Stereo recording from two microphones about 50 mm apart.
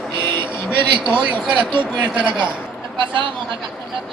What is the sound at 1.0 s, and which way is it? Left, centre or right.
A man's voice, right.